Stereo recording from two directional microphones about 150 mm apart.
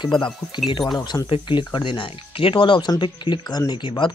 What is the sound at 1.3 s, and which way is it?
Speech, 35° left (ahead or behind).